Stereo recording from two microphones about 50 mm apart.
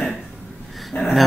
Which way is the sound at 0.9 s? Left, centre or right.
Left.